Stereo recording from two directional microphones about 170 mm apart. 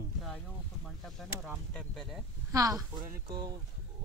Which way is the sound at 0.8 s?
Centre (ahead or behind).